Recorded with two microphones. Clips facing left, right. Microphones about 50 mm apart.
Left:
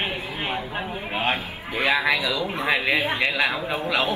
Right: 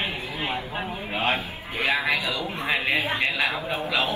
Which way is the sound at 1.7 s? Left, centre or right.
Left.